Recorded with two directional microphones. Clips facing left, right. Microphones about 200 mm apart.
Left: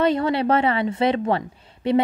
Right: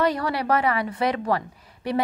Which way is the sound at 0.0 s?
25° left (ahead or behind).